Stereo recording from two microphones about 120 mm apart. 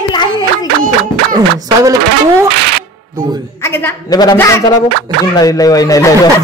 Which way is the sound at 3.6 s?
20° left (ahead or behind).